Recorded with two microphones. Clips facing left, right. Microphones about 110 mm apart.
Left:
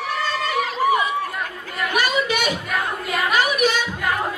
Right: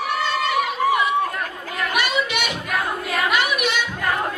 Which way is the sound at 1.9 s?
40° left (ahead or behind).